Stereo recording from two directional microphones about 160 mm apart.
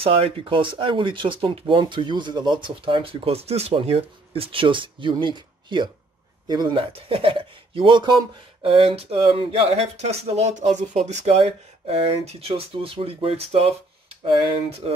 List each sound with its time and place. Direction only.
0.0 s speech: 35° right (ahead or behind)